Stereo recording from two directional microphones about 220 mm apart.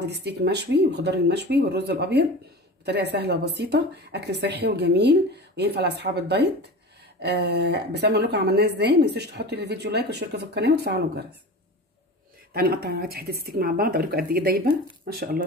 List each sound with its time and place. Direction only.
0.0 s a woman's voice: 50° right (ahead or behind)
12.5 s a woman's voice: 45° right (ahead or behind)